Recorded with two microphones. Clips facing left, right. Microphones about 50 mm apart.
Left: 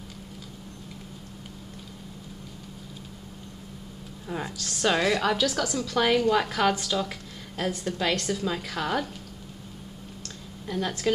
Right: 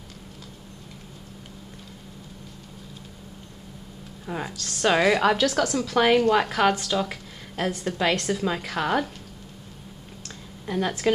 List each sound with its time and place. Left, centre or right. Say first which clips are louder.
4.3 s a woman's voice: right 2 dB; centre
4.6 s a woman's voice: even; centre
5.0 s a woman's voice: right 4 dB; centre
5.4 s a woman's voice: right 4 dB; centre
6.9 s a sound: right 3 dB; centre
7.8 s a woman's voice: right 4 dB; centre
10.7 s a woman's voice: right 3 dB; centre